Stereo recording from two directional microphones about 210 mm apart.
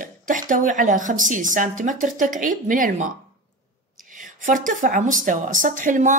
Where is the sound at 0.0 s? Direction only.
40° right (ahead or behind).